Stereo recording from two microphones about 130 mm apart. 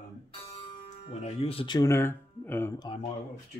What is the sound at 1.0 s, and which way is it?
Speech, 50° left (ahead or behind).